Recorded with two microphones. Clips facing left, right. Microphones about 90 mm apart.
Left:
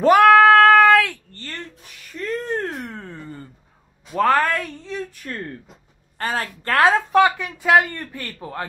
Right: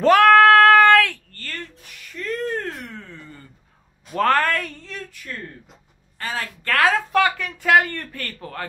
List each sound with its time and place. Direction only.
0.0 s female singing: 10° left (ahead or behind)
0.4 s child singing: centre (ahead or behind)
1.3 s a sound: 25° left (ahead or behind)
4.1 s a sound: 5° left (ahead or behind)
5.1 s speech: 45° left (ahead or behind)
6.6 s speech: 30° left (ahead or behind)
7.1 s speech: 20° left (ahead or behind)